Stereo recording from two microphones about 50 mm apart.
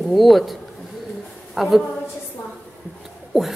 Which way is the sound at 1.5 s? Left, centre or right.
Centre.